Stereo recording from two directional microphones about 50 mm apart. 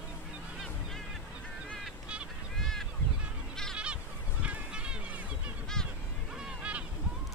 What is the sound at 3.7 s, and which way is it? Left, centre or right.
Goose, right.